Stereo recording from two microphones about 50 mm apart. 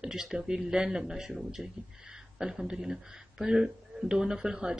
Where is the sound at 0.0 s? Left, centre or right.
Centre.